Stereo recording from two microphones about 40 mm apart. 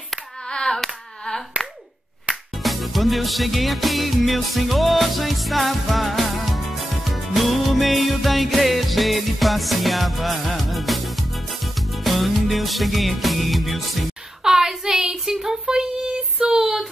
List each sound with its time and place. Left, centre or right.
0.5 s hands: centre
2.6 s music: centre
14.4 s a sound: centre